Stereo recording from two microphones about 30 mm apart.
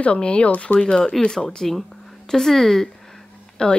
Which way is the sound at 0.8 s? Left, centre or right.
Left.